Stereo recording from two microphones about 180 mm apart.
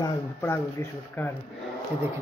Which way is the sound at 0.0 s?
15° left (ahead or behind).